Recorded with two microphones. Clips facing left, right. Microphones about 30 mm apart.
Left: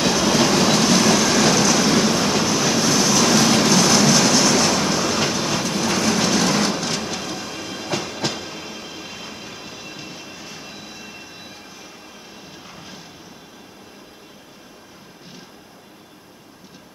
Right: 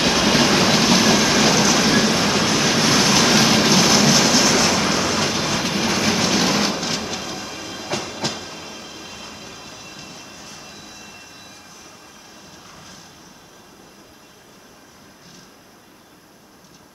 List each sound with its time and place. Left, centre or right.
0.0 s train: right; by 11.5 s centre
12.7 s vehicle: centre